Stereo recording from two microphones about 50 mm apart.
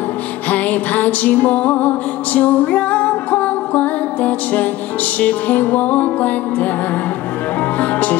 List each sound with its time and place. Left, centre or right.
0.5 s music: left
7.8 s music: left